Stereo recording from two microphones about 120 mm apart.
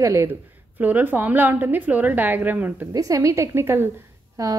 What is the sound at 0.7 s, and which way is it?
A woman's voice, 15° right (ahead or behind).